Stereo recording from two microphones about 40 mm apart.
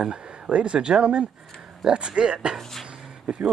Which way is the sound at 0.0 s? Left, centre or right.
Right.